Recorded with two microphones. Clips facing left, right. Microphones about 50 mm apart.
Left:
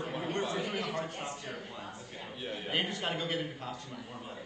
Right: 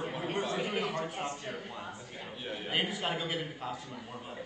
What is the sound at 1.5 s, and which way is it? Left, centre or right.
A man's voice, centre.